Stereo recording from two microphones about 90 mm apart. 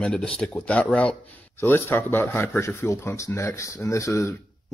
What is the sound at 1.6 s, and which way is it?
Speech, 25° left (ahead or behind).